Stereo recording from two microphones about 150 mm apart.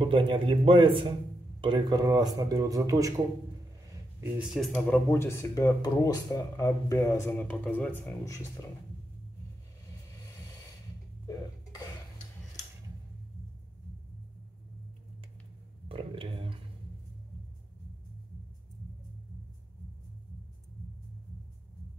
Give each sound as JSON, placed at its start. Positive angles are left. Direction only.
{"t": 0.0, "sound": "a man's voice", "side_deg": -35}
{"t": 4.2, "sound": "speech", "side_deg": -5}
{"t": 4.7, "sound": "speech", "side_deg": 10}
{"t": 11.2, "sound": "cough", "side_deg": 25}
{"t": 15.9, "sound": "a sound", "side_deg": -35}